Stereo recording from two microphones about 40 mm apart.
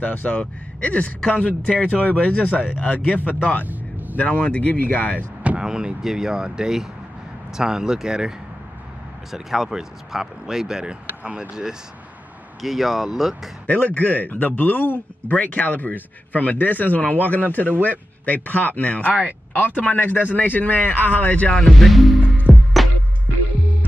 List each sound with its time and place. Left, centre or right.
0.0 s speech: left
0.4 s speech: left
5.6 s speech: centre
9.3 s speech: centre
12.6 s speech: centre
13.7 s speech: left
19.0 s speech: right
19.5 s speech: left
21.5 s speech: centre
22.5 s music: centre